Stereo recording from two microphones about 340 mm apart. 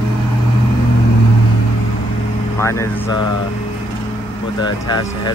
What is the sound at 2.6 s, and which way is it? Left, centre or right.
Speech, centre.